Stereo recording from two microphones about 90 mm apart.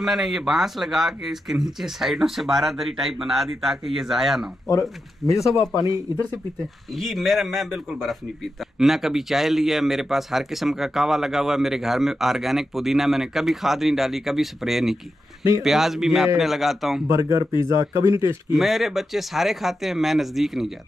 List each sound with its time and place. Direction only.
0.0 s speech: centre (ahead or behind)
5.2 s speech: 35° left (ahead or behind)
7.0 s speech: centre (ahead or behind)
17.1 s speech: 35° right (ahead or behind)
18.5 s speech: centre (ahead or behind)